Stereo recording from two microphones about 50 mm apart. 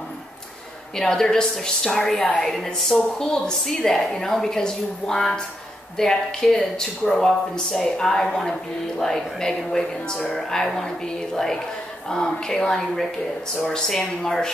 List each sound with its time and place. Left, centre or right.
0.9 s a woman's voice: centre